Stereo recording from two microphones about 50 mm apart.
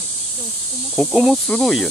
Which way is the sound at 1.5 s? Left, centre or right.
Left.